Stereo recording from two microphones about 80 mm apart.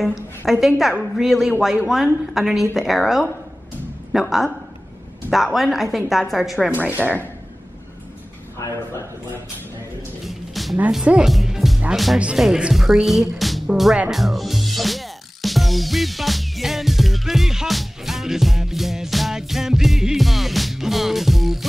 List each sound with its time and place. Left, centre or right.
0.5 s speech: centre
8.6 s a man's voice: left
10.2 s music: centre
11.9 s speech: centre